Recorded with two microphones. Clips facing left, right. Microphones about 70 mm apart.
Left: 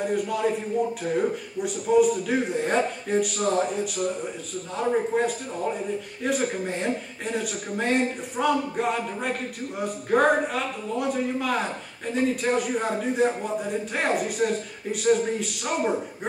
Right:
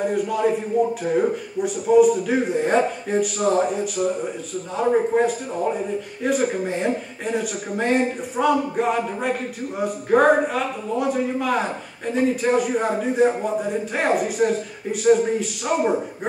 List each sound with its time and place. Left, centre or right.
0.0 s a man's voice: centre